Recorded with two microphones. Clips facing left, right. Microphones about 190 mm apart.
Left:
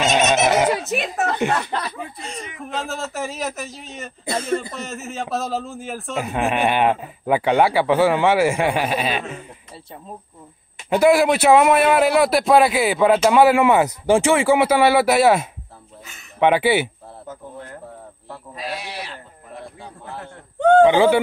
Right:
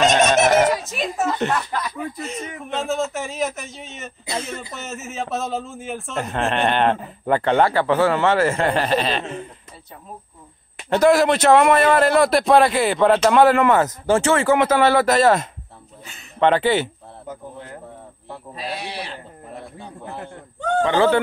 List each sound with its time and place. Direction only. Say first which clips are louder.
0.0 s turkey: right 2 dB; 5° left (ahead or behind)
0.7 s a sound: left 1 dB; 65° left (ahead or behind)
2.2 s a man's voice: right 2 dB; centre (ahead or behind)
10.9 s a man's voice: even; 10° left (ahead or behind)
20.8 s a man's voice: right 1 dB; 10° left (ahead or behind)